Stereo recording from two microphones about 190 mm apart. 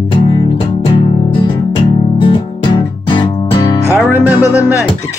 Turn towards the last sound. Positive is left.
turn(degrees=15)  # may be behind; listen again after turning